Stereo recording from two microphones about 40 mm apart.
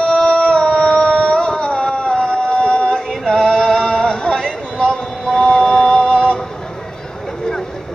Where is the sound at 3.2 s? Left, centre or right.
Centre.